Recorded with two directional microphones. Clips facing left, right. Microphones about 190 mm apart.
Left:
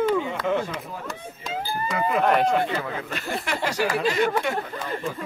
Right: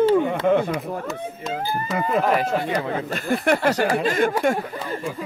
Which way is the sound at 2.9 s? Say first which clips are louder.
Right 6 dB; 40° right (ahead or behind).